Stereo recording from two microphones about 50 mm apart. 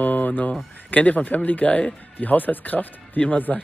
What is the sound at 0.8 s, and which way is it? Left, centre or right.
A man's voice, left.